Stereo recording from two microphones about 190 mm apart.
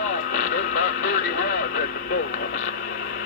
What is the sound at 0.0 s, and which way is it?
Vehicle, 45° left (ahead or behind).